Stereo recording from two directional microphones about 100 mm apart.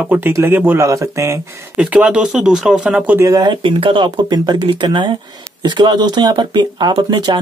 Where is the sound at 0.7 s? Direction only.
30° right (ahead or behind).